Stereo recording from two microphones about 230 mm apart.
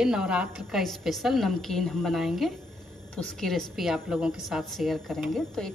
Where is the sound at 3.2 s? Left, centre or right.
Centre.